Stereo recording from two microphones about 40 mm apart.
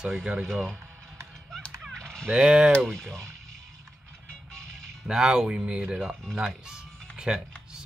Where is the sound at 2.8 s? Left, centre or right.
Centre.